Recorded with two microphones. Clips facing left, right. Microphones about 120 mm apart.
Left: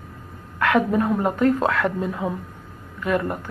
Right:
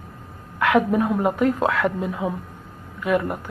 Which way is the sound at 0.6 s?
10° right (ahead or behind).